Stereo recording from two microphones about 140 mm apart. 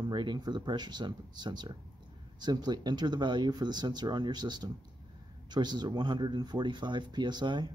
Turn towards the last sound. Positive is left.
turn(degrees=-30)  # may be behind; listen again after turning